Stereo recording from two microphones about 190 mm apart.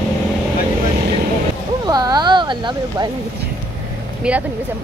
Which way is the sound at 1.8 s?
20° right (ahead or behind).